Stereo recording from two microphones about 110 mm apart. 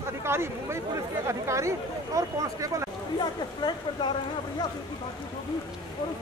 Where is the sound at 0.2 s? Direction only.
25° right (ahead or behind).